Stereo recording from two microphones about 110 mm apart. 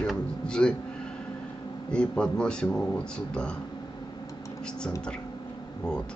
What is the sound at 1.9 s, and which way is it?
Speech, 10° left (ahead or behind).